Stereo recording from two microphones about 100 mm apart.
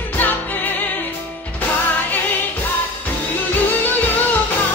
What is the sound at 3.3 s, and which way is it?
Music, 20° left (ahead or behind).